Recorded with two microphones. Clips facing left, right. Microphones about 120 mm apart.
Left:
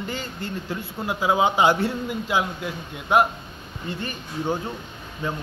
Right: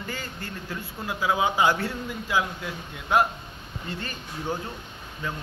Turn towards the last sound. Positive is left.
turn(degrees=25)  # may be behind; listen again after turning